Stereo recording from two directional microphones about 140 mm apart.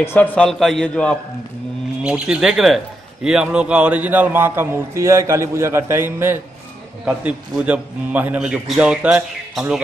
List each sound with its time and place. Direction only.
0.0 s a man's voice: 15° left (ahead or behind)
2.0 s a man's voice: 5° right (ahead or behind)